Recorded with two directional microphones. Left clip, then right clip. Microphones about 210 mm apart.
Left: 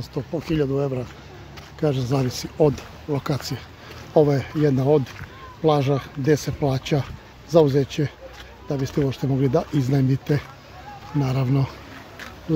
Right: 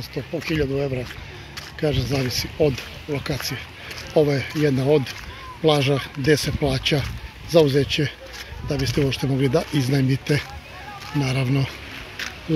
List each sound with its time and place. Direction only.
0.1 s speech: 15° left (ahead or behind)